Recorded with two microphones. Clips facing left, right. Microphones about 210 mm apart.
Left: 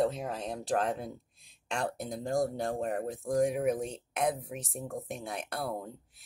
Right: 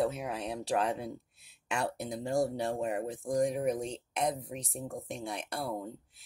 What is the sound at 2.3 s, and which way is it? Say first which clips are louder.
Speech: even; 50° left (ahead or behind).